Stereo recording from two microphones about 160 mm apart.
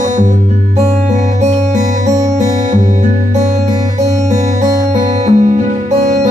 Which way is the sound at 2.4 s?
50° right (ahead or behind).